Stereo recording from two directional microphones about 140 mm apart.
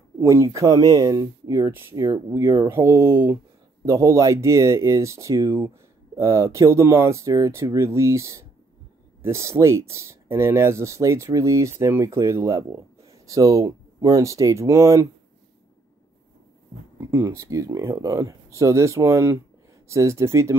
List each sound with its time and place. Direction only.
0.2 s speech: 20° right (ahead or behind)
1.6 s speech: 15° right (ahead or behind)
17.0 s speech: 20° right (ahead or behind)